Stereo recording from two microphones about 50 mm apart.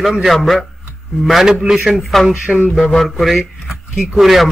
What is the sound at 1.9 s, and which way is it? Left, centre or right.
Speech, centre.